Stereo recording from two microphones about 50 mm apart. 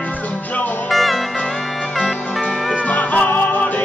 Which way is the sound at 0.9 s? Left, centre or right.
Centre.